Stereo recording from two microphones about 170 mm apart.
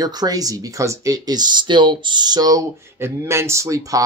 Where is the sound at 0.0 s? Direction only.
25° right (ahead or behind).